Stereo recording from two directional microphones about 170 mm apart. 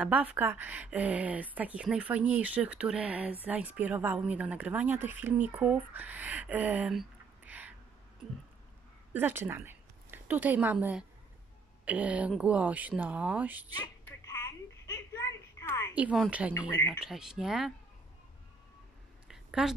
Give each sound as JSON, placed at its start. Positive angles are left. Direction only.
{"t": 0.0, "sound": "speech", "side_deg": -10}
{"t": 9.1, "sound": "a woman's voice", "side_deg": -15}
{"t": 14.0, "sound": "telephone", "side_deg": 15}
{"t": 15.9, "sound": "speech", "side_deg": -5}
{"t": 19.2, "sound": "a sound", "side_deg": -5}